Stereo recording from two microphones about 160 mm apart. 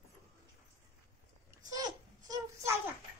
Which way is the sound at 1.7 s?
25° right (ahead or behind).